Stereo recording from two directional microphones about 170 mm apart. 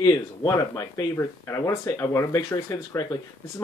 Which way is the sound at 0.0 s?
20° left (ahead or behind).